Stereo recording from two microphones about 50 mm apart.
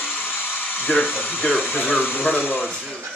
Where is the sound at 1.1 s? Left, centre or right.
Left.